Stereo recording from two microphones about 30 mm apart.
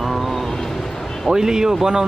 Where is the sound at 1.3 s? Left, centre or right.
Right.